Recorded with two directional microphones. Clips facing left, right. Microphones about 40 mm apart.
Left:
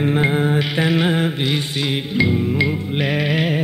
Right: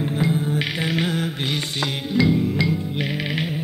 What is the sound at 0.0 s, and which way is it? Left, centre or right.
Music, left.